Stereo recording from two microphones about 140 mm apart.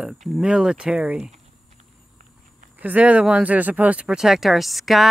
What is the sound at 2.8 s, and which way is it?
Speech, 10° right (ahead or behind).